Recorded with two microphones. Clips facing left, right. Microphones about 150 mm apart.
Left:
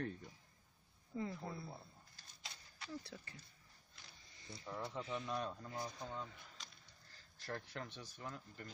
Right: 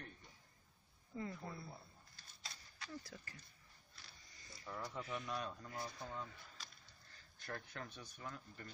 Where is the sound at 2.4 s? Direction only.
25° left (ahead or behind).